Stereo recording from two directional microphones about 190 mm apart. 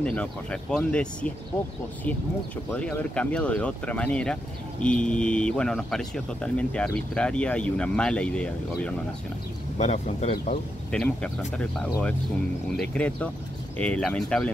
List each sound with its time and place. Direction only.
0.0 s speech: 5° left (ahead or behind)
9.8 s speech: 35° left (ahead or behind)
10.9 s speech: 5° left (ahead or behind)